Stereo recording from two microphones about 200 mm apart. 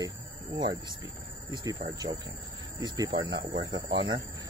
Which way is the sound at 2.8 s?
20° right (ahead or behind).